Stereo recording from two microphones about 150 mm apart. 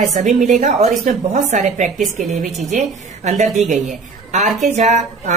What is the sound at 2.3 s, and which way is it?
Speech, centre (ahead or behind).